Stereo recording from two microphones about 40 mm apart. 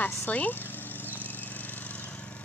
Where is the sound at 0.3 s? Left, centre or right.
Left.